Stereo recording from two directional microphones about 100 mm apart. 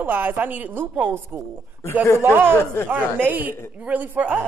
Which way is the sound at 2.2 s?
20° right (ahead or behind).